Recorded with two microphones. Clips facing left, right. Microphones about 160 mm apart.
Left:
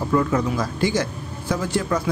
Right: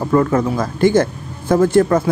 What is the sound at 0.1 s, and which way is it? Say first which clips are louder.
Speech: right 6 dB; 50° right (ahead or behind).